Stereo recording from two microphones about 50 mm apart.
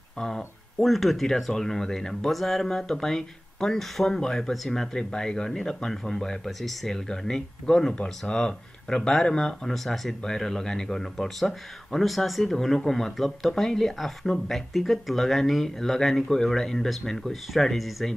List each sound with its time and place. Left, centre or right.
0.7 s speech: centre